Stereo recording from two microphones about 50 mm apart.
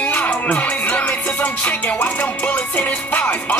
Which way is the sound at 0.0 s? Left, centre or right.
Left.